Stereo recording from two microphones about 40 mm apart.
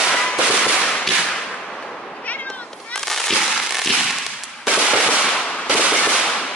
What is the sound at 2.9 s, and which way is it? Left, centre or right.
Fireworks, centre.